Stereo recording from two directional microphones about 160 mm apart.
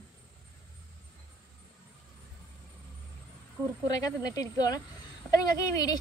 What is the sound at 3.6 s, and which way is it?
Speech, 15° right (ahead or behind).